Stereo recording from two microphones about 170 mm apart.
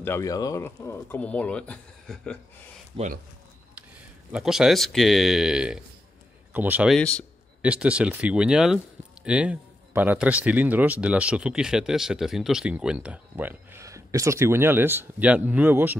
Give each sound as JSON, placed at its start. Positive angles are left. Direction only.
{"t": 0.0, "sound": "speech", "side_deg": 15}
{"t": 2.9, "sound": "speech", "side_deg": -30}
{"t": 4.3, "sound": "speech", "side_deg": 0}
{"t": 7.0, "sound": "speech", "side_deg": 5}
{"t": 7.6, "sound": "speech", "side_deg": -5}